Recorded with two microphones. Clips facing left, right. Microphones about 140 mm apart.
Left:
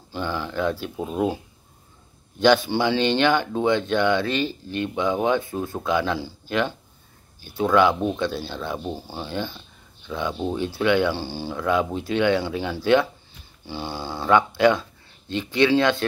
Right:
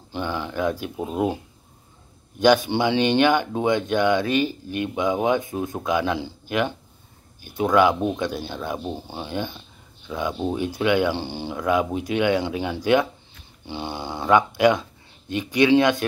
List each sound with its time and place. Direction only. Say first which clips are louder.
0.1 s speech: even; 20° right (ahead or behind)